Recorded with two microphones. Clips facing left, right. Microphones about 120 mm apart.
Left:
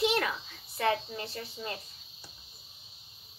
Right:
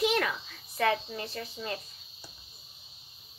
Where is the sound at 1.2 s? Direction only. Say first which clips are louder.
Right 1 dB; 30° left (ahead or behind).